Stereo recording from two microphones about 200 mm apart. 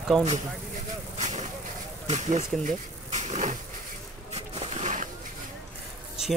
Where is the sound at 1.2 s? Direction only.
35° right (ahead or behind).